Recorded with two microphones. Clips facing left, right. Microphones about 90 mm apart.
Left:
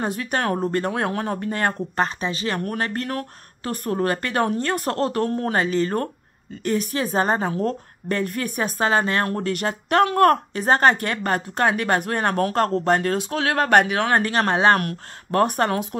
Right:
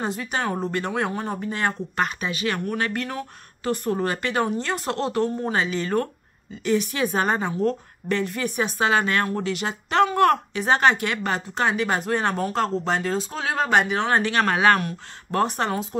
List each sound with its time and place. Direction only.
0.0 s speech: 55° left (ahead or behind)
0.7 s speech: 45° left (ahead or behind)
2.0 s a woman's voice: 35° left (ahead or behind)
3.1 s a woman's voice: 50° left (ahead or behind); by 9.2 s 35° left (ahead or behind)
9.2 s speech: 50° left (ahead or behind)
14.2 s a woman's voice: 35° left (ahead or behind)
14.8 s speech: 60° left (ahead or behind)